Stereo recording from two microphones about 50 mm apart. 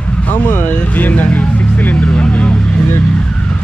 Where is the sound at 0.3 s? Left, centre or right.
Left.